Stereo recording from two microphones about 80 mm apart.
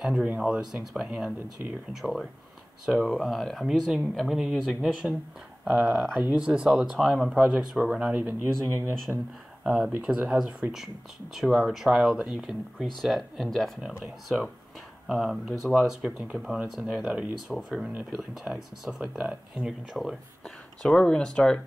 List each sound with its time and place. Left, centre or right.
0.0 s speech: centre
2.0 s speech: centre
5.7 s speech: centre
9.6 s a sound: centre
9.9 s speech: centre
20.0 s speech: centre